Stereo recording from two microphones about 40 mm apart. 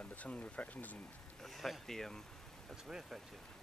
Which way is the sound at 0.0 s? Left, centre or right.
Left.